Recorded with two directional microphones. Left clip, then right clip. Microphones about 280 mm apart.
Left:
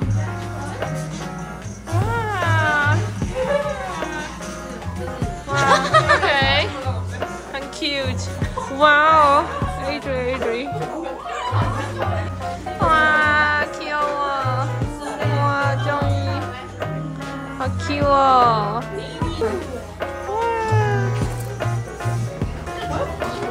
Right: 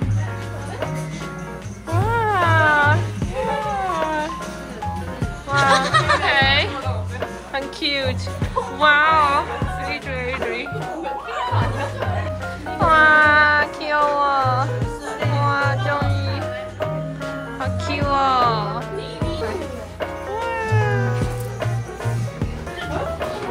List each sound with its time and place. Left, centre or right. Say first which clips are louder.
2.0 s cat: right 4 dB; centre
3.9 s music: right 5 dB; centre
5.6 s music: left 1 dB; left
6.2 s music: right 1 dB; centre
12.8 s music: right 3 dB; centre
17.6 s music: left 3 dB; centre
20.5 s cat: left 1 dB; centre